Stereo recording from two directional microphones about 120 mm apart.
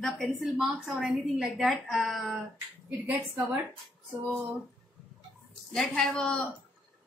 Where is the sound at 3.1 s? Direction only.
15° right (ahead or behind).